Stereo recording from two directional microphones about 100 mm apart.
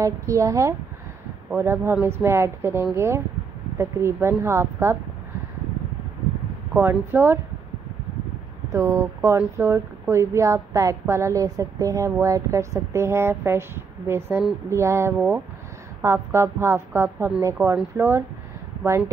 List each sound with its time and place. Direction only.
0.0 s a woman's voice: 35° right (ahead or behind)
6.7 s a woman's voice: 20° right (ahead or behind)
8.7 s a woman's voice: 25° right (ahead or behind)